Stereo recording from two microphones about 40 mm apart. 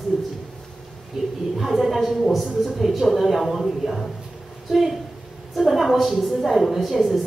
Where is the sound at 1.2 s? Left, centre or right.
Centre.